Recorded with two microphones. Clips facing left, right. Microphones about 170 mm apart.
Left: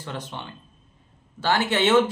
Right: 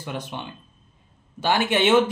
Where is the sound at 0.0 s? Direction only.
15° right (ahead or behind).